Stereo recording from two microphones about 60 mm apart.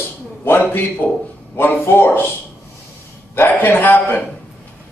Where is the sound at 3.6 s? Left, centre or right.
Left.